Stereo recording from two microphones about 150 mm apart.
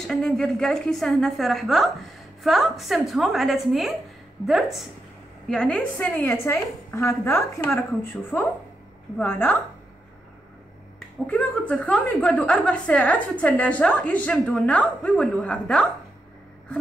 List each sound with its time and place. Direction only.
0.0 s a woman's voice: 5° left (ahead or behind)
11.2 s a woman's voice: 10° left (ahead or behind)